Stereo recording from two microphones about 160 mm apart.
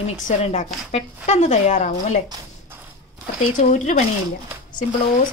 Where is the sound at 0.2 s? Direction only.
50° left (ahead or behind).